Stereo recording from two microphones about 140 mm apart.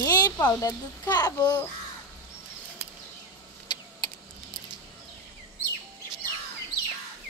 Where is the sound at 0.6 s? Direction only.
25° left (ahead or behind).